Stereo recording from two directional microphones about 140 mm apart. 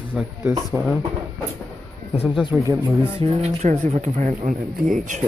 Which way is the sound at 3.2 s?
45° right (ahead or behind).